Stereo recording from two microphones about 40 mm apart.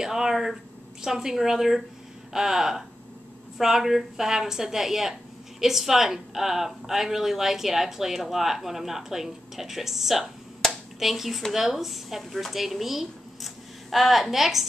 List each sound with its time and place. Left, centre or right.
0.0 s speech: centre